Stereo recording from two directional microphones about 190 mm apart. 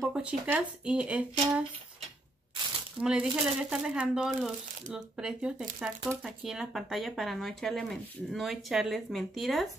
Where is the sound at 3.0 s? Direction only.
5° right (ahead or behind).